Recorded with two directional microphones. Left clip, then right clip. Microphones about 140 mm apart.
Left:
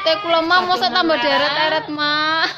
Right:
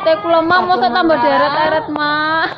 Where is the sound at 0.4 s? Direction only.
55° left (ahead or behind).